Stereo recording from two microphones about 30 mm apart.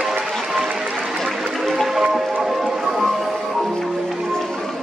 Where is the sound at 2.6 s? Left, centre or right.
Centre.